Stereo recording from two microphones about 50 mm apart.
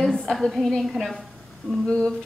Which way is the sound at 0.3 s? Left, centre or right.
Centre.